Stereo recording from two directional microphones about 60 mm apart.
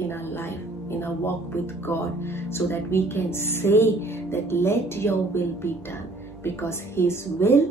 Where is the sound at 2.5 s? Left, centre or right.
Left.